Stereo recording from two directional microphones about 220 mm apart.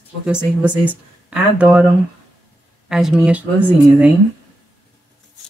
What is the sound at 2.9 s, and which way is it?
Speech, centre (ahead or behind).